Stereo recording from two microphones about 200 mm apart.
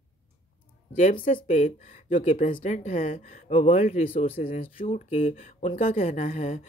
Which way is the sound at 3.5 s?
30° left (ahead or behind).